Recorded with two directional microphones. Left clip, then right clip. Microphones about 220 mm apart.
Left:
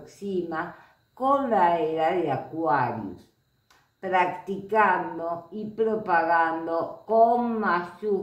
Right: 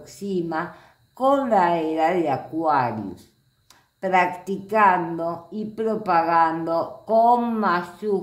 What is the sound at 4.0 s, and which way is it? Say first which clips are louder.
A woman's voice: right 4 dB; 50° right (ahead or behind).